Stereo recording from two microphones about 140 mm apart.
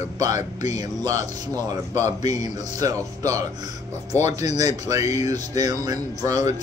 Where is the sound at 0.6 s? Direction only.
25° right (ahead or behind).